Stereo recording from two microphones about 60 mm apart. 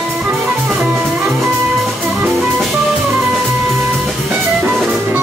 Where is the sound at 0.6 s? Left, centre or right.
Centre.